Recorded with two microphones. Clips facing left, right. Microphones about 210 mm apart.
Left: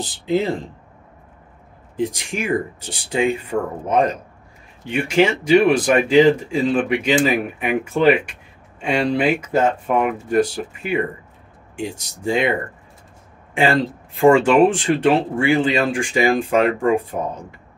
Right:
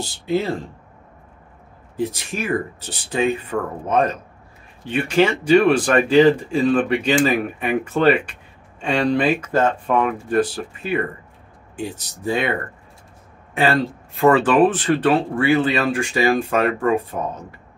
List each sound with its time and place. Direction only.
0.0 s speech: 15° left (ahead or behind)
2.0 s speech: 15° left (ahead or behind)
14.2 s speech: 10° left (ahead or behind)